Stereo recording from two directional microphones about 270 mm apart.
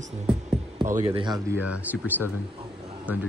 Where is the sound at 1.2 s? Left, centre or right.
Centre.